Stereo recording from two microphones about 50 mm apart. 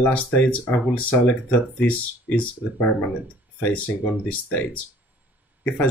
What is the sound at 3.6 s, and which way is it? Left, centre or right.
Speech, left.